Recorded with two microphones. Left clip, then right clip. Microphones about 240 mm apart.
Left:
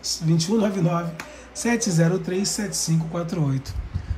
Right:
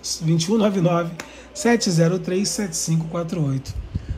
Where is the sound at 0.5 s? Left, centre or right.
Right.